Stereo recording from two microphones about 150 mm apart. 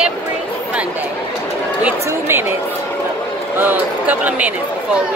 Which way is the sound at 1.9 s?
15° right (ahead or behind).